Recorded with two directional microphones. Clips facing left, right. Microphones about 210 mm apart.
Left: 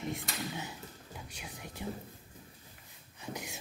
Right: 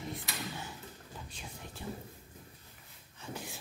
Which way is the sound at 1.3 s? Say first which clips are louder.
Left 1 dB; 10° left (ahead or behind).